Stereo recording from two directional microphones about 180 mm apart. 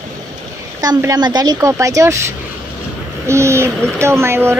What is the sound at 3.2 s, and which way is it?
Speech, 15° right (ahead or behind).